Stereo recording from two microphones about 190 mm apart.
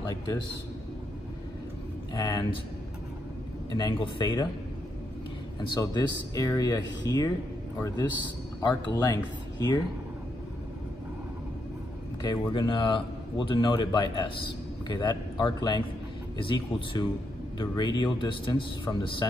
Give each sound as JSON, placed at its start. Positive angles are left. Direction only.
{"t": 2.1, "sound": "a man's voice", "side_deg": 20}
{"t": 3.7, "sound": "a man's voice", "side_deg": 25}
{"t": 5.6, "sound": "a man's voice", "side_deg": 20}
{"t": 8.6, "sound": "a man's voice", "side_deg": 20}
{"t": 12.2, "sound": "a man's voice", "side_deg": 25}